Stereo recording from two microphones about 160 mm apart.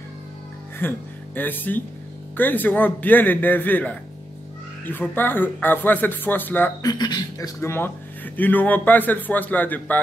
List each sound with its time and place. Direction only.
0.7 s speech: 10° left (ahead or behind)
6.8 s speech: 25° left (ahead or behind); by 9.9 s 10° left (ahead or behind)